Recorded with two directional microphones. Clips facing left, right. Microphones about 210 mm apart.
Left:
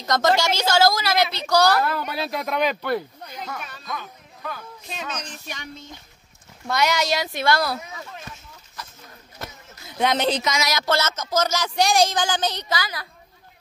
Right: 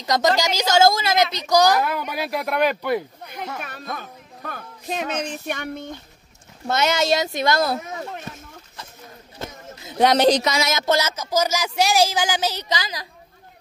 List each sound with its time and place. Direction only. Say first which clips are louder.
0.0 s speech: even; 15° right (ahead or behind)
3.6 s speech: right 2 dB; 55° right (ahead or behind)
6.7 s speech: right 2 dB; 25° right (ahead or behind)
9.9 s speech: right 6 dB; 40° right (ahead or behind); by 12.6 s 10° right (ahead or behind)
12.7 s speech: even; 20° right (ahead or behind)